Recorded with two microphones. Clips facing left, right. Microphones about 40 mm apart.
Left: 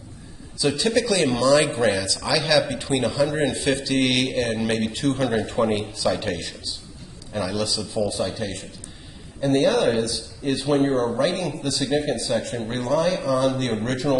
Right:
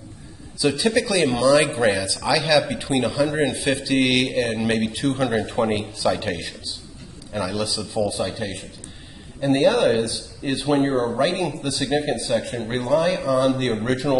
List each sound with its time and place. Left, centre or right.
0.6 s a man's voice: centre
11.8 s a man's voice: right
12.1 s a man's voice: centre